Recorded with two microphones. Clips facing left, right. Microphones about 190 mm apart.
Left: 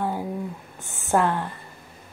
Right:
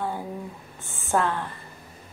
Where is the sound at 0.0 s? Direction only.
10° left (ahead or behind).